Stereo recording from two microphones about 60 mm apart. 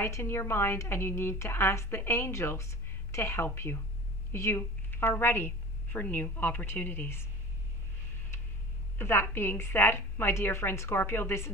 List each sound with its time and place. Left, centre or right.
0.0 s a woman's voice: left
8.9 s a woman's voice: left